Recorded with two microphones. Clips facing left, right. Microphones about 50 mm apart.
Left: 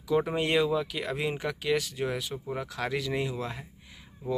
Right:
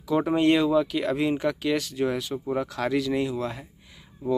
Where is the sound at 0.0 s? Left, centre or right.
Centre.